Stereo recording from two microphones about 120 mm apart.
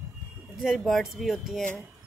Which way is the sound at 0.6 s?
Centre (ahead or behind).